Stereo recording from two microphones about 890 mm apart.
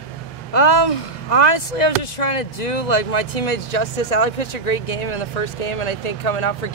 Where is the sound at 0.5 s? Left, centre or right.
Left.